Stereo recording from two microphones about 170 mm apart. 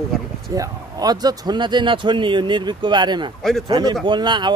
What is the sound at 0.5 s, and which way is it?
Speech, 20° right (ahead or behind).